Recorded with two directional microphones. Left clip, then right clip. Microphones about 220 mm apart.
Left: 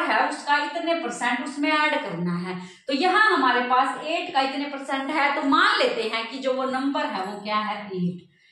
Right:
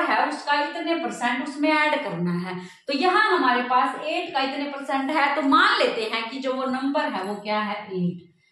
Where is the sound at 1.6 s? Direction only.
20° right (ahead or behind).